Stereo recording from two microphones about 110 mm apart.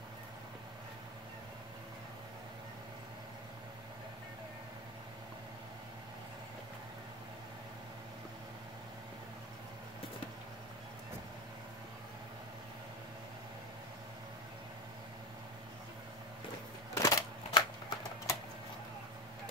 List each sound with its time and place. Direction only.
16.9 s typewriter: 30° left (ahead or behind)